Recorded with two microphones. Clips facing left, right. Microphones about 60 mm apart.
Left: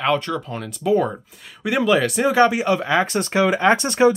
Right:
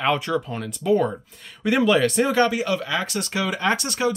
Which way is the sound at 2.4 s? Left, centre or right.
Left.